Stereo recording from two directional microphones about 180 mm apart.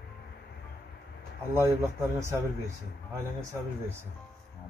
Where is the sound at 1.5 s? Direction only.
15° right (ahead or behind).